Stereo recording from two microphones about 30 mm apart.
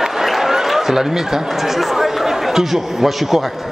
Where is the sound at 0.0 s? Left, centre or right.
Centre.